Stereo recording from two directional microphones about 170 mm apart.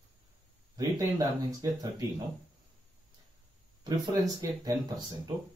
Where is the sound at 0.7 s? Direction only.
20° right (ahead or behind).